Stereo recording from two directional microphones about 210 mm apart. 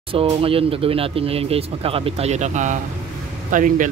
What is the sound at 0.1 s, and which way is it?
Speech, 25° right (ahead or behind).